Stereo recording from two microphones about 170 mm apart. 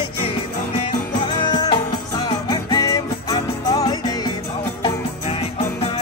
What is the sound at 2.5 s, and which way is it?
Music, 25° left (ahead or behind).